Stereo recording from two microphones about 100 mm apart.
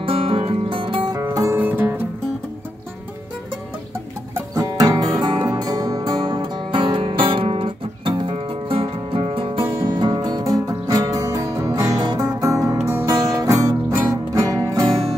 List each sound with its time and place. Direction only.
0.0 s music: 65° right (ahead or behind)
1.3 s music: 30° right (ahead or behind)
1.6 s music: 20° right (ahead or behind)
4.6 s music: 35° right (ahead or behind)